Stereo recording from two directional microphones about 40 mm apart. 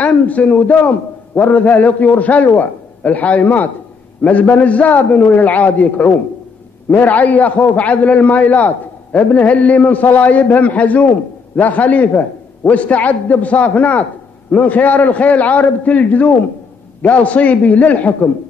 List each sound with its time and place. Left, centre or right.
0.0 s a man's voice: left